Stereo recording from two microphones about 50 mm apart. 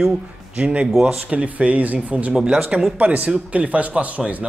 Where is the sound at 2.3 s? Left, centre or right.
Centre.